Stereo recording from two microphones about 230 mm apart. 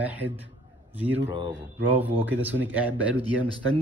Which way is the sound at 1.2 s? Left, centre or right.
Centre.